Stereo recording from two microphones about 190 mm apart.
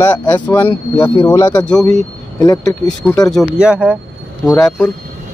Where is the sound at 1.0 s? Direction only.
20° left (ahead or behind).